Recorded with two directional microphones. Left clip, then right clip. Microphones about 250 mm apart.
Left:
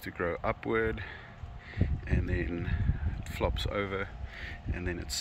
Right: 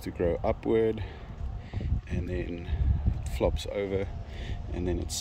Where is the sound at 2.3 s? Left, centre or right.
Centre.